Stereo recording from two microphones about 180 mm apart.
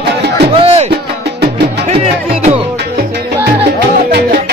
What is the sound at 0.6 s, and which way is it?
Music, 30° right (ahead or behind).